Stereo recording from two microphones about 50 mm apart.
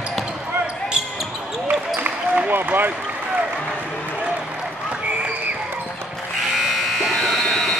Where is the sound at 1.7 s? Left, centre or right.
Right.